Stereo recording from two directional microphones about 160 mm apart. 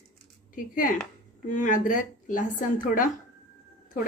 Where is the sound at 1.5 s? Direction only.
55° left (ahead or behind).